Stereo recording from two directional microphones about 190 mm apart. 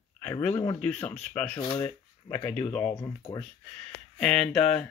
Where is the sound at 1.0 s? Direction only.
5° left (ahead or behind).